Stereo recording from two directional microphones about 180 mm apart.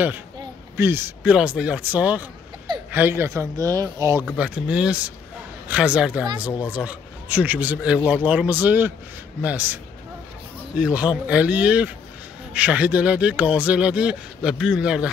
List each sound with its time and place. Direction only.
0.7 s speech: 15° right (ahead or behind)
10.8 s speech: 5° right (ahead or behind)